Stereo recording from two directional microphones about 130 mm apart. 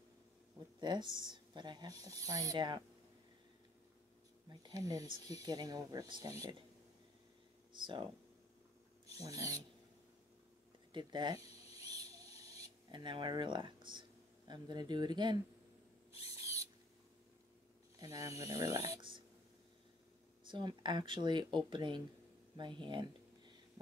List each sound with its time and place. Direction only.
0.7 s speech: 35° right (ahead or behind)
4.5 s speech: 30° right (ahead or behind)
7.7 s speech: 35° right (ahead or behind)
9.1 s speech: 25° right (ahead or behind)
10.9 s a sound: 35° right (ahead or behind)
14.5 s speech: 35° right (ahead or behind)
16.2 s owl: 25° right (ahead or behind)
17.9 s speech: 25° right (ahead or behind)
18.9 s speech: 40° right (ahead or behind)
20.4 s speech: 35° right (ahead or behind)